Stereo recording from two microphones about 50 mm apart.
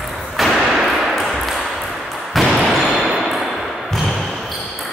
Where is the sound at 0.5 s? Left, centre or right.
Centre.